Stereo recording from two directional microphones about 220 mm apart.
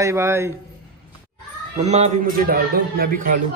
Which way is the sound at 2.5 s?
40° right (ahead or behind).